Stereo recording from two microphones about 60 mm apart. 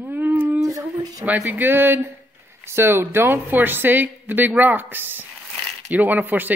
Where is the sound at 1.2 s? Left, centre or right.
Right.